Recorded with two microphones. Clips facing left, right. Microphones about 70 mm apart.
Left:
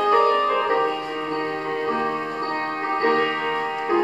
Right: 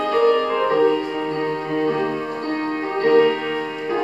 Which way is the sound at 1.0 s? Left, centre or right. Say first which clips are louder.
Right 3 dB; centre.